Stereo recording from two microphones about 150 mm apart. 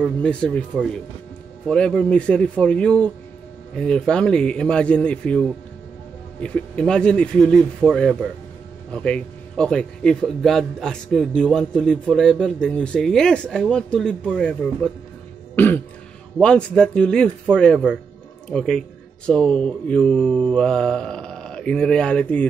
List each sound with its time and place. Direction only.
0.2 s a man's voice: 5° left (ahead or behind)
15.5 s throat clearing: 15° left (ahead or behind)
16.3 s speech: 5° left (ahead or behind)